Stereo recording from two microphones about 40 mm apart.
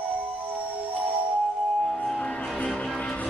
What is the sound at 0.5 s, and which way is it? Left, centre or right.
Music, right.